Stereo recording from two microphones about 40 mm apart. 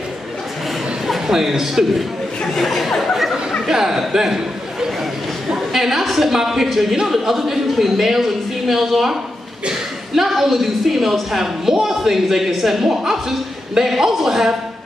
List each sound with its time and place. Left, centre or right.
1.0 s a man's voice: centre
2.5 s chatter: centre
3.7 s a man's voice: centre